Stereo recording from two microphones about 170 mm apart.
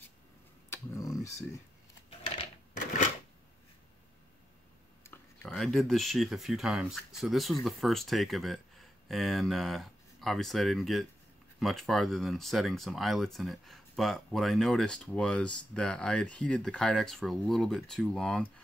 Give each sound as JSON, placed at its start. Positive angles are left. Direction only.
{"t": 0.7, "sound": "tick-tock", "side_deg": 20}
{"t": 5.0, "sound": "a sound", "side_deg": 15}
{"t": 5.5, "sound": "speech", "side_deg": 0}